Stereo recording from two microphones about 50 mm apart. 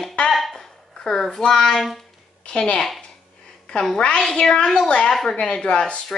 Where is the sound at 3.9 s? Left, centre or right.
Centre.